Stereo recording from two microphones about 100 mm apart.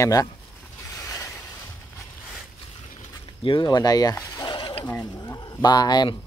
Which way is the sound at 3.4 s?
50° left (ahead or behind).